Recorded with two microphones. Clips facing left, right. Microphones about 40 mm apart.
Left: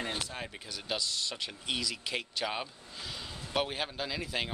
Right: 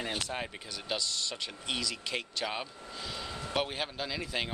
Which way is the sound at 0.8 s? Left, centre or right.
Centre.